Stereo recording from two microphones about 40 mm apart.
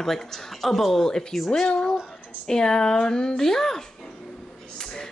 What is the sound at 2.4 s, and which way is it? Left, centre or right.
Speech, centre.